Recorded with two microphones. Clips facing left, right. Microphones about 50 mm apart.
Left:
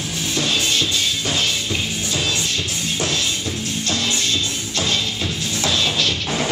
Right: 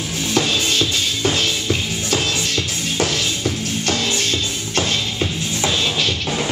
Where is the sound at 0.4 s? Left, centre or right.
Right.